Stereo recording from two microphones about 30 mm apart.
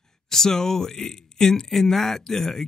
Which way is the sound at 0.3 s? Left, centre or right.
Centre.